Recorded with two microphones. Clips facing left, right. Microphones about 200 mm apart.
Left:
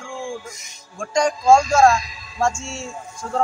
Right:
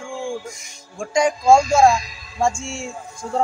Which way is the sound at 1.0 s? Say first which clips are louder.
Right 1 dB; 5° right (ahead or behind).